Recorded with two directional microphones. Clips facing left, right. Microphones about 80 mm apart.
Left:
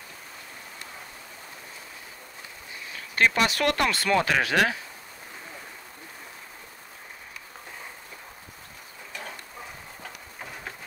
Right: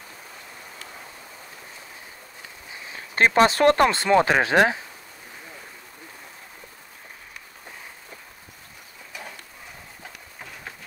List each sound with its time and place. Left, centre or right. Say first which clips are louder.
2.9 s speech: right 3 dB; right